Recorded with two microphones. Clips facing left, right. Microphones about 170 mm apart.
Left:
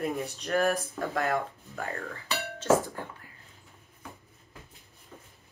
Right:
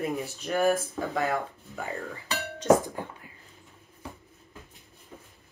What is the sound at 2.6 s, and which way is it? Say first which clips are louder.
Speech: right 3 dB; 15° right (ahead or behind).